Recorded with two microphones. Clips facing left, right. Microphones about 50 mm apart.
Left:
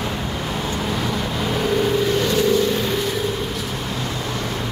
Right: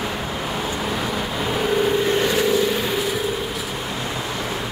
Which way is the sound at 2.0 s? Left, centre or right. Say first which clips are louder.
Left 1 dB; right.